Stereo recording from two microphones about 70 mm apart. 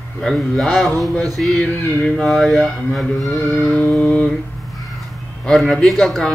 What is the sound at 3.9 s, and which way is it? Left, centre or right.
Mantra, centre.